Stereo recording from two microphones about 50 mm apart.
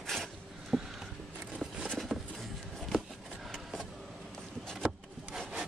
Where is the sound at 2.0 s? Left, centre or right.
Centre.